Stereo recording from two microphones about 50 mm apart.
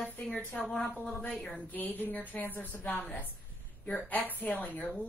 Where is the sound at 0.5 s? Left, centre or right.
Centre.